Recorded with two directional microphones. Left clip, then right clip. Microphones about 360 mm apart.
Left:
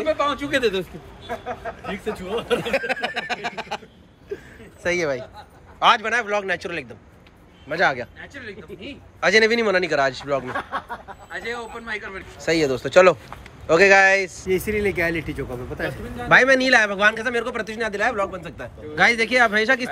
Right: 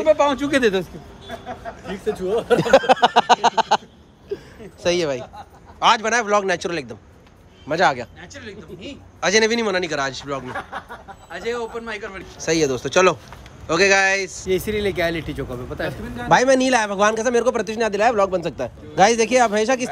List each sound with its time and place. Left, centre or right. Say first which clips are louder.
0.1 s speech: right 5 dB; right
2.2 s speech: right 5 dB; centre
2.7 s a sound: right 10 dB; right
3.3 s a sound: right 12 dB; centre
4.8 s a man's voice: right 2 dB; centre
8.2 s a man's voice: left 1 dB; centre
10.5 s speech: left 2 dB; centre
11.2 s a man's voice: right 4 dB; centre